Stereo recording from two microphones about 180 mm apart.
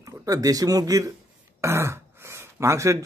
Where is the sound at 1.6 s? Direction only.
15° right (ahead or behind).